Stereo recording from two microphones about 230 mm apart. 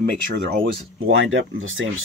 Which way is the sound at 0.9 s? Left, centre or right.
Right.